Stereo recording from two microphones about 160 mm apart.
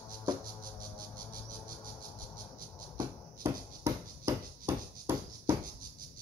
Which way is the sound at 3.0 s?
15° right (ahead or behind).